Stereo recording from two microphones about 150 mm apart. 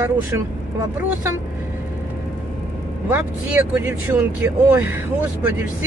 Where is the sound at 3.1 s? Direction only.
15° right (ahead or behind).